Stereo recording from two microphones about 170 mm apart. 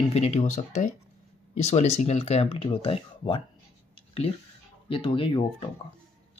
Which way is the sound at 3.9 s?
35° left (ahead or behind).